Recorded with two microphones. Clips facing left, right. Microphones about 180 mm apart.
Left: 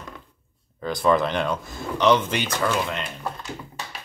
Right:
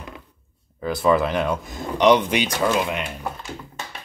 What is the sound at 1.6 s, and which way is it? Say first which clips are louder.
Speech: right 3 dB; 15° right (ahead or behind).